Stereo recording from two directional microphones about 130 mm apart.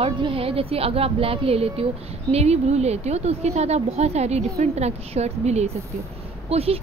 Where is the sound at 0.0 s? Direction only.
45° right (ahead or behind).